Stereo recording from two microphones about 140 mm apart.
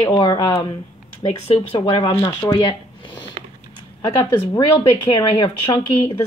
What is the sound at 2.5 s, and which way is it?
Speech, 35° left (ahead or behind).